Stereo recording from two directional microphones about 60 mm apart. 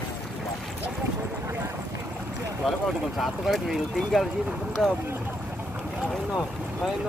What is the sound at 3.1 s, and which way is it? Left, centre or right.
Speech, centre.